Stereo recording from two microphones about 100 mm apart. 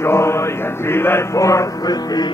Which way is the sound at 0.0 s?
25° left (ahead or behind).